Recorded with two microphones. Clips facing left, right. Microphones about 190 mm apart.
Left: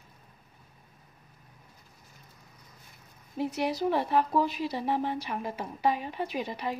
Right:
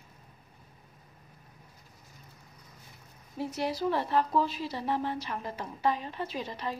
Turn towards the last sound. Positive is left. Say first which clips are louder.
# left 3 dB
turn(degrees=15)  # may be behind; listen again after turning